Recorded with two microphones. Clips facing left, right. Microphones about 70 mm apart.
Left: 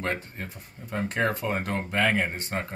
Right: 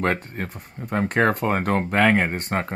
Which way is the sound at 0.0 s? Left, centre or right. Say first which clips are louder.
Right 7 dB; right.